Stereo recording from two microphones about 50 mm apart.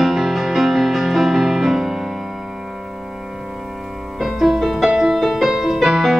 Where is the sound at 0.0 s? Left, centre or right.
Centre.